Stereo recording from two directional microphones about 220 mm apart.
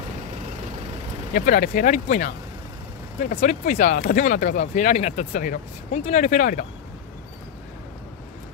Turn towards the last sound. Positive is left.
turn(degrees=40)  # may be behind; listen again after turning